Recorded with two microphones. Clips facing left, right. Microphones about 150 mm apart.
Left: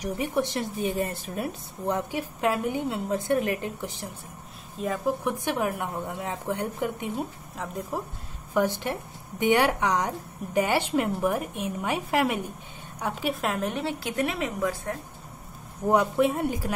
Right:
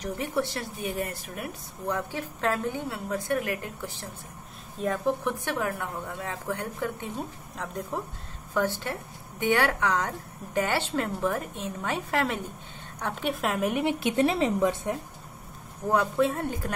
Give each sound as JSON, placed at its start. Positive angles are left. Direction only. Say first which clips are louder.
{"t": 0.0, "sound": "a woman's voice", "louder": "left 2 dB", "side_deg": 15}
{"t": 4.8, "sound": "a woman's voice", "louder": "even", "side_deg": 5}
{"t": 7.5, "sound": "speech", "louder": "left 1 dB", "side_deg": 5}
{"t": 8.5, "sound": "a woman's voice", "louder": "left 3 dB", "side_deg": 15}
{"t": 15.9, "sound": "a woman's voice", "louder": "left 2 dB", "side_deg": 15}